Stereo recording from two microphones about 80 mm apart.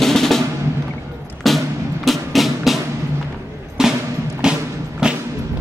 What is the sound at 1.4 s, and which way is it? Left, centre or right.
Music, centre.